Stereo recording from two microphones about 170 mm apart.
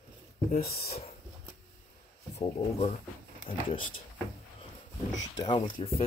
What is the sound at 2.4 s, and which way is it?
Speech, 40° left (ahead or behind).